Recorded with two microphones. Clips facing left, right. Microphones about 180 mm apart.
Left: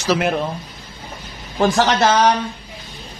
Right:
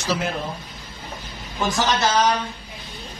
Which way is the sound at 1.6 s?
65° left (ahead or behind).